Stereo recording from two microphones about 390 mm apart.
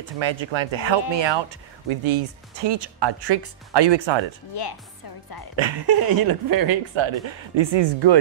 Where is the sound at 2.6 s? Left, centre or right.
Right.